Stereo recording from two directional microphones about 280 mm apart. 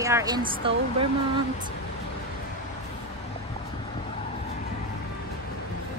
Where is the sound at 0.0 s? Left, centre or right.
Centre.